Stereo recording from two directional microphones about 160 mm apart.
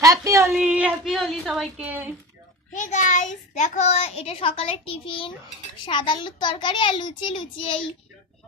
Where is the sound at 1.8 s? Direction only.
10° right (ahead or behind).